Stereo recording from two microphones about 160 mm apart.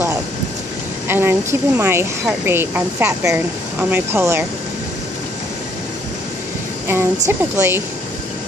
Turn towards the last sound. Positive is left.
turn(degrees=-20)  # may be behind; listen again after turning